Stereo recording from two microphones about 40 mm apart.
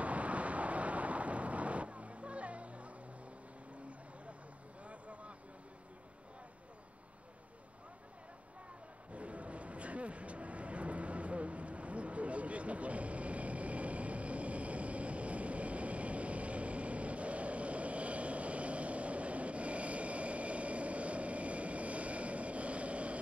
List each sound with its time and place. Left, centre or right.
0.0 s vehicle: right
4.8 s vehicle: right
9.1 s vehicle: right